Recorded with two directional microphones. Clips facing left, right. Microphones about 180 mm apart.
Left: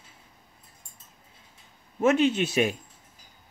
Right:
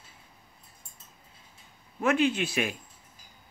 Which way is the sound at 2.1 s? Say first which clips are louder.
Left 2 dB; 25° left (ahead or behind).